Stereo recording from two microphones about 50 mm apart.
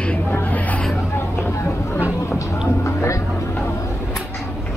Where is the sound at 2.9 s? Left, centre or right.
Left.